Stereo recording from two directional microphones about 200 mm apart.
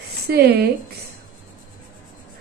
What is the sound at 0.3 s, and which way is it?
Speech, 50° right (ahead or behind).